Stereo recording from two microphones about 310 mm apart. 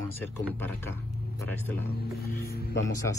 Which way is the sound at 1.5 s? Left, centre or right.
Centre.